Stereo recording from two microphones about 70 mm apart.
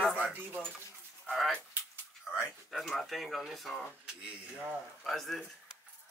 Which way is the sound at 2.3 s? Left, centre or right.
Centre.